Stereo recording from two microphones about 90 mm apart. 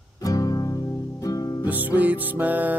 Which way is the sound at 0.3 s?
45° left (ahead or behind).